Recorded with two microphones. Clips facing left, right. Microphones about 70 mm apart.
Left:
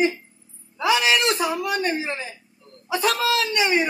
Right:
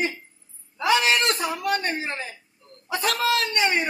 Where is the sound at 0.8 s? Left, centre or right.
Right.